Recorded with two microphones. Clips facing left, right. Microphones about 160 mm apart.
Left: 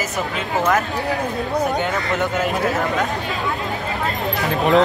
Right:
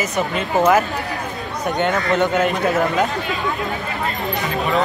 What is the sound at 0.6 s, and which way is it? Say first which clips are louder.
Speech: right 4 dB; 5° right (ahead or behind).